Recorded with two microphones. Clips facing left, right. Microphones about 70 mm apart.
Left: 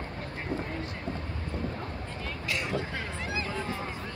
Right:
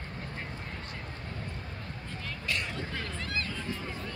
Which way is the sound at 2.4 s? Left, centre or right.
Centre.